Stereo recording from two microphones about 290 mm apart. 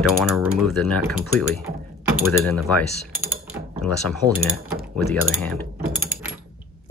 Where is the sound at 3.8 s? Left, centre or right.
Centre.